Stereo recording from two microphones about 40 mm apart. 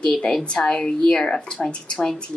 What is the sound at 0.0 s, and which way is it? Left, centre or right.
Speech, left.